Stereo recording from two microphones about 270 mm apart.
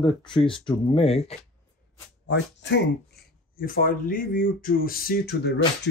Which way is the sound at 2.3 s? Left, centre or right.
Left.